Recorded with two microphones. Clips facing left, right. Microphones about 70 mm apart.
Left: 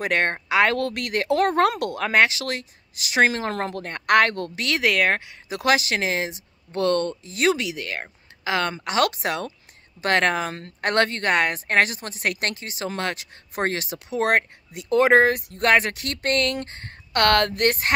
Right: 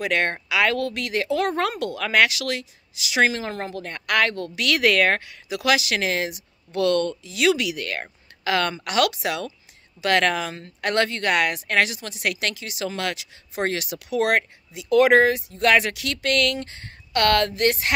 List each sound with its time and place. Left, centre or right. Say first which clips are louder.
0.0 s speech: left 1 dB; left
3.4 s speech: left 3 dB; left
3.8 s speech: left 4 dB; left
4.6 s speech: right 3 dB; left
5.5 s speech: left 1 dB; left
5.9 s speech: even; left
10.5 s speech: left 1 dB; left
15.2 s speech: even; left
15.6 s speech: even; left